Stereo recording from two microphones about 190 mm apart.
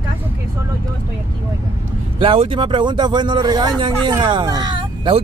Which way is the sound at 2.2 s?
30° right (ahead or behind).